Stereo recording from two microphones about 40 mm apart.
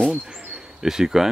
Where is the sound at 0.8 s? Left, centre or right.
Centre.